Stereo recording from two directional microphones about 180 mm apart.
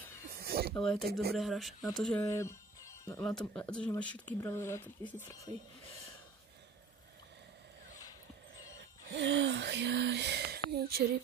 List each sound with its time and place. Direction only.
0.4 s a sound: 60° right (ahead or behind)
0.7 s speech: centre (ahead or behind)
2.2 s music: 15° left (ahead or behind)
3.2 s speech: 5° left (ahead or behind)
8.7 s speech: 85° right; by 11.1 s 60° right (ahead or behind)